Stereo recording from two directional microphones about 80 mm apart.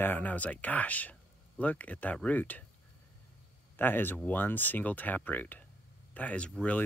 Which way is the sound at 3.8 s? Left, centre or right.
Left.